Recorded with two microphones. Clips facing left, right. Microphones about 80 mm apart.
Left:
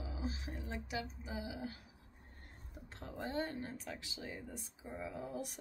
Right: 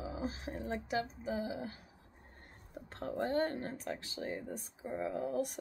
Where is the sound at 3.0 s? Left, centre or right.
Right.